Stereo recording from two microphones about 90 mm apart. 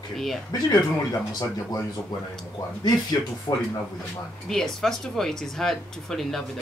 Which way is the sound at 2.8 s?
45° left (ahead or behind).